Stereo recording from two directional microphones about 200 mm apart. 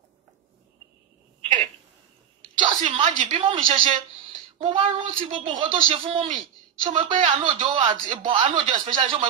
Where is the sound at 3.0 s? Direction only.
40° right (ahead or behind).